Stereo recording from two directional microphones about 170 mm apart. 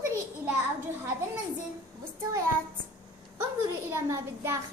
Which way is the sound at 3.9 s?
15° right (ahead or behind).